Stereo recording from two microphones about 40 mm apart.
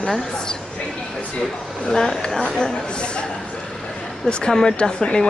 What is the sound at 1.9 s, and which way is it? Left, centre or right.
Speech, centre.